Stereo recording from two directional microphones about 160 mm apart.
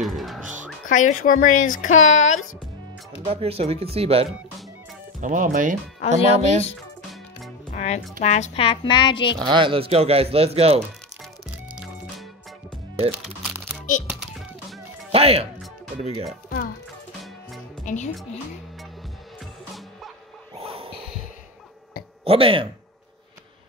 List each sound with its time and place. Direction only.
0.0 s music: centre (ahead or behind)
0.8 s speech: 50° left (ahead or behind)
3.3 s speech: 40° right (ahead or behind)
5.2 s speech: 55° right (ahead or behind)
7.7 s music: 50° left (ahead or behind)
8.2 s speech: 45° left (ahead or behind); by 9.3 s 30° left (ahead or behind)
9.4 s speech: 30° right (ahead or behind)
11.7 s music: 5° right (ahead or behind)
15.0 s speech: 40° right (ahead or behind)
17.8 s a woman's voice: 45° left (ahead or behind)
20.5 s snort: 35° right (ahead or behind)
22.2 s speech: 35° right (ahead or behind)